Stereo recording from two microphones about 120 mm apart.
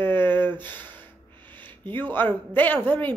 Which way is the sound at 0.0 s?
15° left (ahead or behind).